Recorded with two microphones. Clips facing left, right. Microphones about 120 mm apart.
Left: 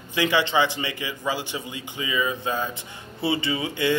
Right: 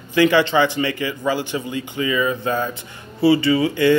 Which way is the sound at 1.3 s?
50° right (ahead or behind).